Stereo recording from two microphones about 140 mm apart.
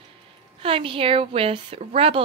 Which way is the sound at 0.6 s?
40° right (ahead or behind).